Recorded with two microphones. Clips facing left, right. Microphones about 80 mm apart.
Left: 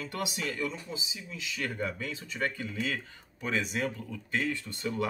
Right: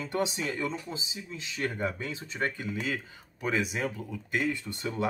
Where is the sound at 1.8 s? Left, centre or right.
Right.